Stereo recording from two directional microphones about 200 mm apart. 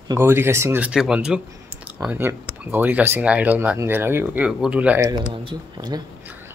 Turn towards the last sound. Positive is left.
turn(degrees=-20)  # may be behind; listen again after turning